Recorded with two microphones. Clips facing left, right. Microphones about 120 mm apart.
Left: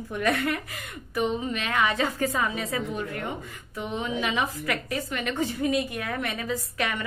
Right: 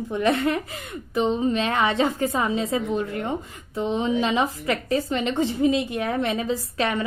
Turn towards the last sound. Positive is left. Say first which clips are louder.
# right 5 dB
turn(degrees=-30)  # may be behind; listen again after turning